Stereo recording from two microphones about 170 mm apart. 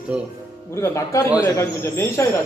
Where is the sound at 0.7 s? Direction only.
15° left (ahead or behind).